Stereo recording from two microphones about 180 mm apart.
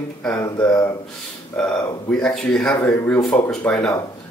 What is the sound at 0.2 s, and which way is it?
Speech, centre (ahead or behind).